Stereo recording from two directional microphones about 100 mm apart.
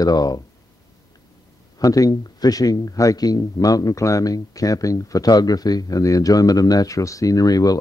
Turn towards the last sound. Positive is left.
turn(degrees=40)  # may be behind; listen again after turning